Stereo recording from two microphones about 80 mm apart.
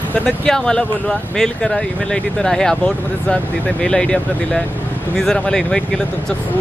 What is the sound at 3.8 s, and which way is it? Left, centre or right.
Speech, centre.